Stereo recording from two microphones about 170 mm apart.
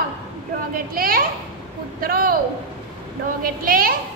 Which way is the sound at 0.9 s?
60° right (ahead or behind).